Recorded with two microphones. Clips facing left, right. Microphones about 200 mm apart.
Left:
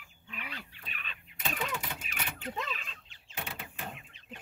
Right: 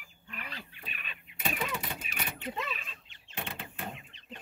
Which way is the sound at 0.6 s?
15° right (ahead or behind).